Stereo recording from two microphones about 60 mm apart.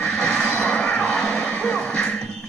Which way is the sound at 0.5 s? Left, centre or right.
Centre.